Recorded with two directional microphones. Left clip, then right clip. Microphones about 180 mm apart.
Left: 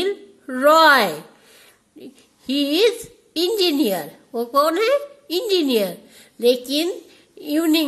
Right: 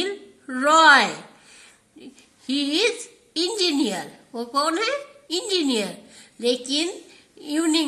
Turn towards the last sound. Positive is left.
turn(degrees=45)  # may be behind; listen again after turning